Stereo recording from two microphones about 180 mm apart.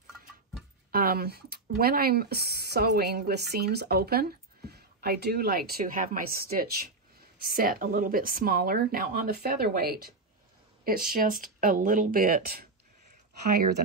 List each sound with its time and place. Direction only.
0.9 s a woman's voice: 55° right (ahead or behind)